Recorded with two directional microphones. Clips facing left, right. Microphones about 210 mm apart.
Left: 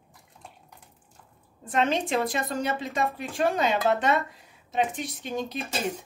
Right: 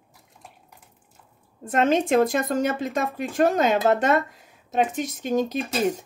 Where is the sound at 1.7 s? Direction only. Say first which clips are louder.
Right 6 dB; 45° right (ahead or behind).